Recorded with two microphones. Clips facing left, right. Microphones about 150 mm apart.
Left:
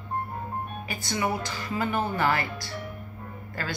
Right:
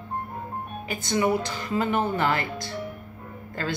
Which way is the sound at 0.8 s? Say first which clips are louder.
Right 6 dB; 20° right (ahead or behind).